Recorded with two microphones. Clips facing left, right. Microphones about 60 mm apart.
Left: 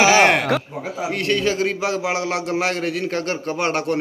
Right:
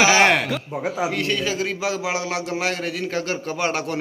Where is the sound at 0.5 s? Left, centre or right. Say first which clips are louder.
Left 6 dB; left.